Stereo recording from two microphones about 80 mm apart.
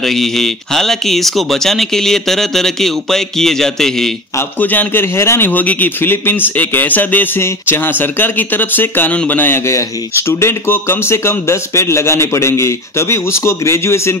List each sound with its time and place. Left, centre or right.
0.0 s speech: centre
4.6 s speech: left
5.1 s speech: left
5.5 s speech: left
9.7 s speech: left